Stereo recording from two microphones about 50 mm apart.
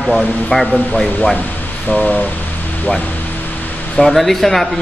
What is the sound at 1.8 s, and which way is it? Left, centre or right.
Speech, left.